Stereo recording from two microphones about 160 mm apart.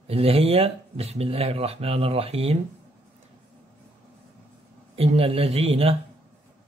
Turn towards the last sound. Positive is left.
turn(degrees=-40)  # may be behind; listen again after turning